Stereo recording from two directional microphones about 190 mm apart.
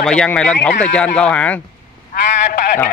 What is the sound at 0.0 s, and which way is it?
Speech, 5° left (ahead or behind).